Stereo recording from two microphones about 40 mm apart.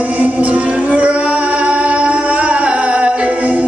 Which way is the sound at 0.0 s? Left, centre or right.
Right.